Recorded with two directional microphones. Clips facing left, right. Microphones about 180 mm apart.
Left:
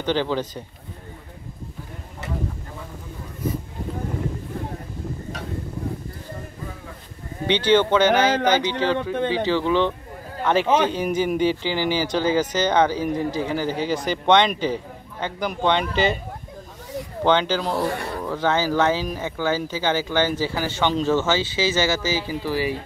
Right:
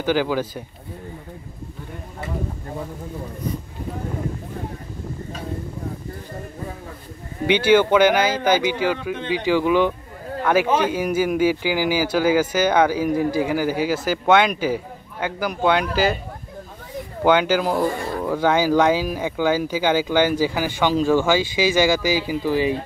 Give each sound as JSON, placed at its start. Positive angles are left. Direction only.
{"t": 0.0, "sound": "speech", "side_deg": -10}
{"t": 7.4, "sound": "speech", "side_deg": -10}
{"t": 17.2, "sound": "speech", "side_deg": -10}